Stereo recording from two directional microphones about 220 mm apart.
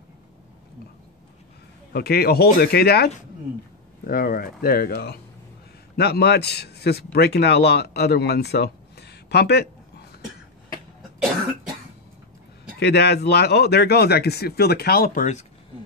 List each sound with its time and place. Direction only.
1.9 s speech: 45° left (ahead or behind)
4.1 s a man's voice: 40° left (ahead or behind)
12.7 s speech: 50° left (ahead or behind)